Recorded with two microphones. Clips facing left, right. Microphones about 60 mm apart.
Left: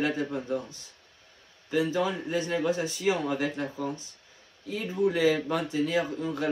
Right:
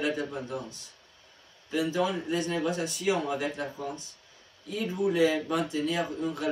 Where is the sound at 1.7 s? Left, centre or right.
Left.